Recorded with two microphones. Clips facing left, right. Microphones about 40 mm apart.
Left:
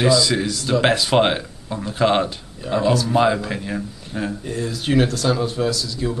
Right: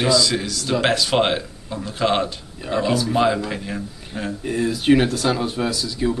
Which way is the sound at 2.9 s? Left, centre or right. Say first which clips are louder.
Left 2 dB; centre.